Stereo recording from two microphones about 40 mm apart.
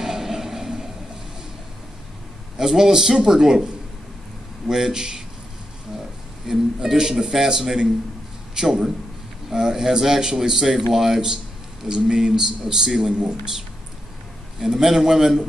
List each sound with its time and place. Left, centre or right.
0.0 s a sound: centre
2.5 s speech: centre
4.6 s speech: centre
6.4 s speech: centre
14.6 s speech: centre